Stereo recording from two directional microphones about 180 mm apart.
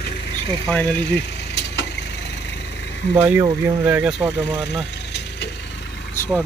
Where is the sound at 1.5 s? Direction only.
75° left (ahead or behind).